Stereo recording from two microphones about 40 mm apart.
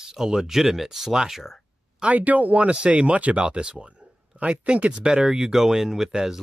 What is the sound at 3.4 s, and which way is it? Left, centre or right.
Speech, right.